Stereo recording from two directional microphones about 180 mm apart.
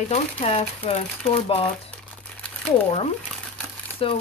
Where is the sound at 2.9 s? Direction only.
35° left (ahead or behind).